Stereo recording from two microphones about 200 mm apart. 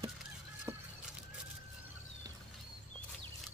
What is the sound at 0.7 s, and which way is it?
Fowl, 10° right (ahead or behind).